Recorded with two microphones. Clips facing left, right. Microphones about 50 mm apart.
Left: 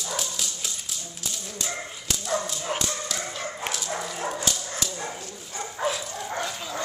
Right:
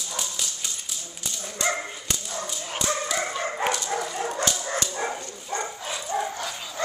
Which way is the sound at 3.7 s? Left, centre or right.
Centre.